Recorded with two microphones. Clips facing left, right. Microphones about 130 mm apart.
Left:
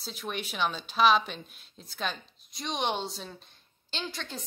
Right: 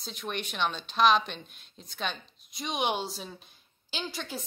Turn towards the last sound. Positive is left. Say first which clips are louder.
# right 1 dB
turn(degrees=-5)  # may be behind; listen again after turning